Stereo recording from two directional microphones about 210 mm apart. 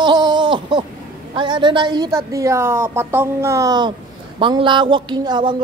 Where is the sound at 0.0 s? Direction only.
20° right (ahead or behind).